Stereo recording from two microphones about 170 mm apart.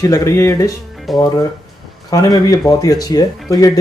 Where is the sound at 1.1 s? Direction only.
Centre (ahead or behind).